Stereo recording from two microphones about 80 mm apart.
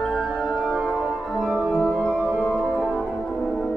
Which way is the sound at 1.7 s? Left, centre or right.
Centre.